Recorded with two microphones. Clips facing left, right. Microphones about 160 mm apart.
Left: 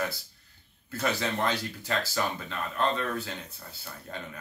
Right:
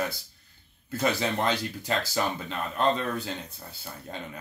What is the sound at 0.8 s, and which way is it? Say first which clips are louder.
Speech: right 3 dB; 15° right (ahead or behind).